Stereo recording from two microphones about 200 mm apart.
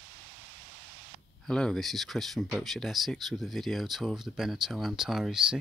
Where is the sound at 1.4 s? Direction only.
5° left (ahead or behind).